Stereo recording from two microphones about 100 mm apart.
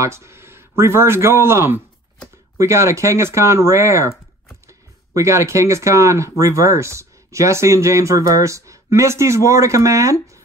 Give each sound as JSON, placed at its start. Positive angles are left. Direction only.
{"t": 0.0, "sound": "speech", "side_deg": -25}
{"t": 5.1, "sound": "speech", "side_deg": -30}